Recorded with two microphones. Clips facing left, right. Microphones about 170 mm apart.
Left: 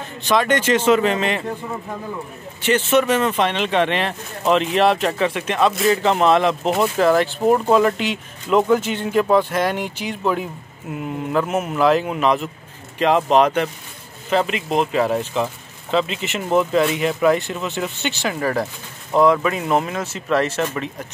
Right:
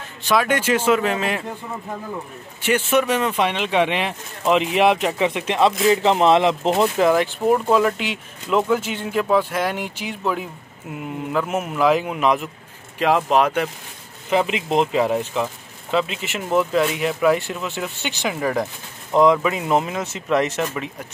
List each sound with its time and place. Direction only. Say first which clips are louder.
0.3 s speech: left 2 dB; 5° right (ahead or behind)
2.6 s speech: left 2 dB; 10° right (ahead or behind)
7.1 s speech: left 1 dB; 10° right (ahead or behind)
14.3 s speech: even; 15° right (ahead or behind)